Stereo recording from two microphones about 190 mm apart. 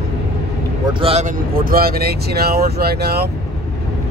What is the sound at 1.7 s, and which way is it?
Speech, 55° right (ahead or behind).